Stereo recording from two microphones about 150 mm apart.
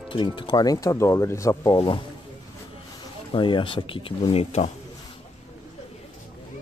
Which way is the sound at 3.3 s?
35° left (ahead or behind).